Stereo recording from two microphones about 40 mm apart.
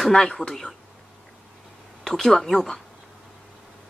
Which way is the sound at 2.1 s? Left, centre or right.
Centre.